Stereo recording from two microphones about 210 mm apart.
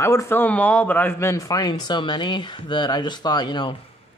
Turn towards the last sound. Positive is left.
turn(degrees=20)  # may be behind; listen again after turning